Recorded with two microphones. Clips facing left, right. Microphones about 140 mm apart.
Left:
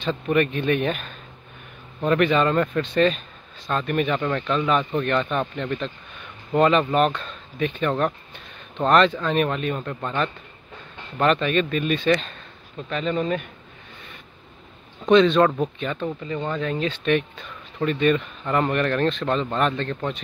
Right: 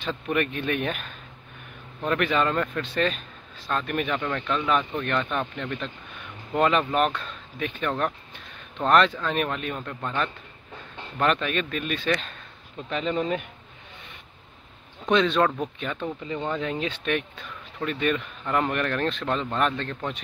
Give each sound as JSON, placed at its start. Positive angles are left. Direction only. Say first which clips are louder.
{"t": 0.0, "sound": "speech", "louder": "left 5 dB", "side_deg": -5}
{"t": 12.9, "sound": "speech", "louder": "left 2 dB", "side_deg": -15}
{"t": 15.0, "sound": "speech", "louder": "left 6 dB", "side_deg": -5}
{"t": 16.3, "sound": "speech", "louder": "left 1 dB", "side_deg": -15}